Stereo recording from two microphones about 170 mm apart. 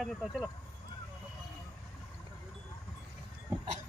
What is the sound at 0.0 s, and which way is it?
Speech, 5° right (ahead or behind).